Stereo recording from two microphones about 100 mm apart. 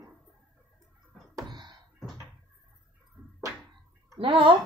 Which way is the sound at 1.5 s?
50° right (ahead or behind).